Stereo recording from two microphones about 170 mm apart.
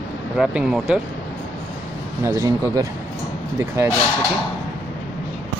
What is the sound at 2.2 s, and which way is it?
Speech, 20° right (ahead or behind).